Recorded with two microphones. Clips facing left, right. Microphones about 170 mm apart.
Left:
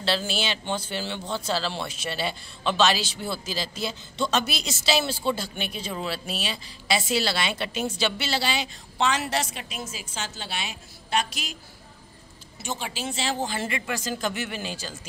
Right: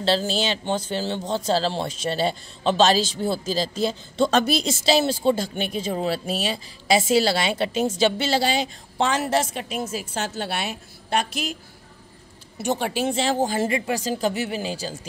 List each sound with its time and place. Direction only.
0.0 s speech: 40° right (ahead or behind)
12.5 s speech: 60° right (ahead or behind); by 15.0 s 35° right (ahead or behind)